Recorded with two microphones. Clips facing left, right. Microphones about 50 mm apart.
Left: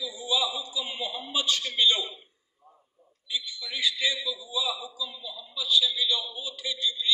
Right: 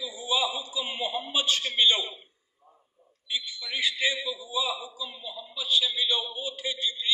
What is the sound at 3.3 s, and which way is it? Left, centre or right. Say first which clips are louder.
A man's voice: right 1 dB; right.